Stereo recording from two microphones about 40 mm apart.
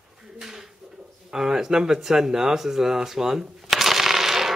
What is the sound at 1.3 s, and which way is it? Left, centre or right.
Speech, centre.